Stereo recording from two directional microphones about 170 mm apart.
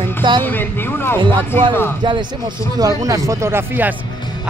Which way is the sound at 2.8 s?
20° right (ahead or behind).